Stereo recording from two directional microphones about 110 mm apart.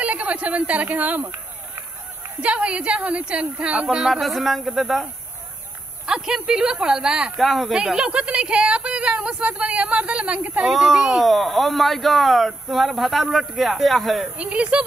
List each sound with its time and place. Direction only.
0.0 s a sound: 15° right (ahead or behind)
2.4 s speech: 10° right (ahead or behind)
6.0 s speech: 5° right (ahead or behind)